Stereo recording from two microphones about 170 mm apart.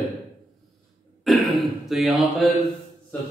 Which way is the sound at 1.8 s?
Centre (ahead or behind).